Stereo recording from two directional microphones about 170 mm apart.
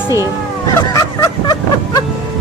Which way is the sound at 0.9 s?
20° left (ahead or behind).